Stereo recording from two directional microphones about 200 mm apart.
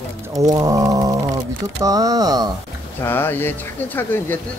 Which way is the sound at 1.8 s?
20° right (ahead or behind).